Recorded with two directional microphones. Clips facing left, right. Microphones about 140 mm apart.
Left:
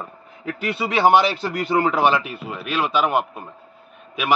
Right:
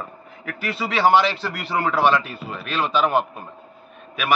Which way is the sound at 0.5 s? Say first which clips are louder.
Left 2 dB; 20° left (ahead or behind).